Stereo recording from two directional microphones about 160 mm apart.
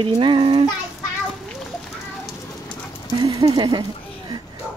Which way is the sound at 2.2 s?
5° left (ahead or behind).